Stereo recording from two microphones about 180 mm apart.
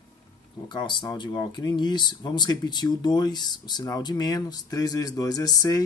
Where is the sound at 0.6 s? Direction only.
25° left (ahead or behind).